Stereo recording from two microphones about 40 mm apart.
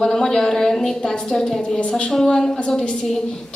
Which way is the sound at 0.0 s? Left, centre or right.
Centre.